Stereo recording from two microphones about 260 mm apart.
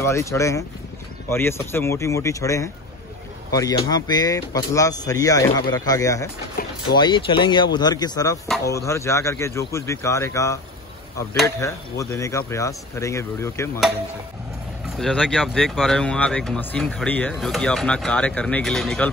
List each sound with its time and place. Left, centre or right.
0.0 s speech: centre
15.0 s speech: centre